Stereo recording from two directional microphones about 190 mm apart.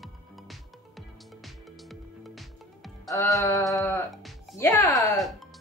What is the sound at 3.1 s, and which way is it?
Music, 15° left (ahead or behind).